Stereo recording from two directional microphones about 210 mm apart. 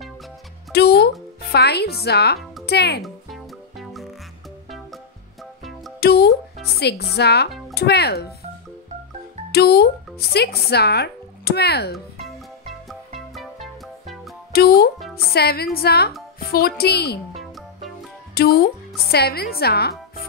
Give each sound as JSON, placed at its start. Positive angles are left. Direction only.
{"t": 0.7, "sound": "speech", "side_deg": 50}
{"t": 3.0, "sound": "music", "side_deg": 0}
{"t": 5.9, "sound": "a child's voice", "side_deg": 50}
{"t": 9.5, "sound": "speech", "side_deg": 50}
{"t": 12.8, "sound": "music", "side_deg": 0}
{"t": 14.5, "sound": "a child's voice", "side_deg": 45}
{"t": 17.3, "sound": "music", "side_deg": 0}
{"t": 18.3, "sound": "speech", "side_deg": 45}